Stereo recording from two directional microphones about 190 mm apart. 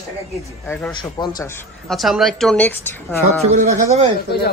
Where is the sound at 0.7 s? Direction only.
10° left (ahead or behind).